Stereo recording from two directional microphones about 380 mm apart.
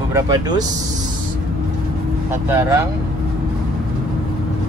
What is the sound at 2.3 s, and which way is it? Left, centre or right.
Speech, centre.